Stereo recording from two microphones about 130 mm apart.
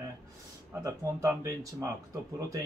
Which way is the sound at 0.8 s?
25° right (ahead or behind).